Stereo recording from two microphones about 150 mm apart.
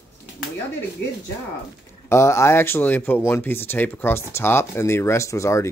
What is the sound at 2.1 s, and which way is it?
Speech, 20° left (ahead or behind).